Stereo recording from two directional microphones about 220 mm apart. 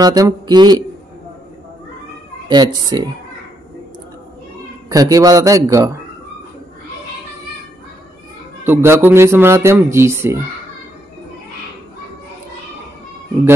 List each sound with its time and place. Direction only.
0.0 s speech: 15° right (ahead or behind)
2.4 s speech: 20° right (ahead or behind)
4.8 s speech: 15° right (ahead or behind)
8.6 s speech: 10° right (ahead or behind)